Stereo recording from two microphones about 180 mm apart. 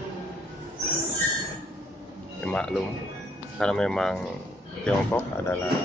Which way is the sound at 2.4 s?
5° left (ahead or behind).